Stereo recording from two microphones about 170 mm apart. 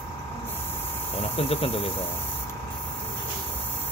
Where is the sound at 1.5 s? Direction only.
35° left (ahead or behind).